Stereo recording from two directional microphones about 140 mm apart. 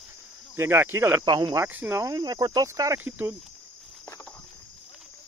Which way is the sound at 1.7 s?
15° right (ahead or behind).